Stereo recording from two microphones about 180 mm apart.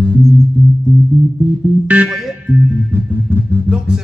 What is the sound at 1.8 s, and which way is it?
Music, 5° right (ahead or behind).